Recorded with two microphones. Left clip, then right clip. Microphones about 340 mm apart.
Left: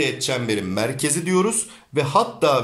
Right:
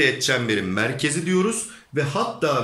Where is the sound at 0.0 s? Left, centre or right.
Centre.